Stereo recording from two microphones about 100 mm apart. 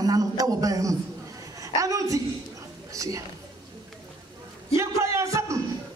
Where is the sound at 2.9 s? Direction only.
35° right (ahead or behind).